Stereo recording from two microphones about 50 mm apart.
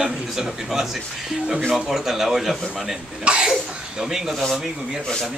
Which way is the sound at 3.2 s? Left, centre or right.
Right.